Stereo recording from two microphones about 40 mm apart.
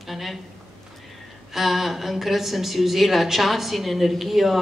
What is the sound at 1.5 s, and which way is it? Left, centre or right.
A woman's voice, centre.